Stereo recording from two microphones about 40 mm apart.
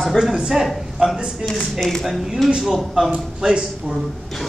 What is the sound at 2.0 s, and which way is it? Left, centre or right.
Speech, centre.